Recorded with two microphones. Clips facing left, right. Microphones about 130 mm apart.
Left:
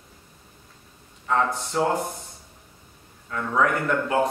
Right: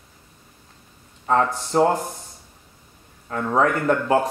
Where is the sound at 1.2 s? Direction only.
40° right (ahead or behind).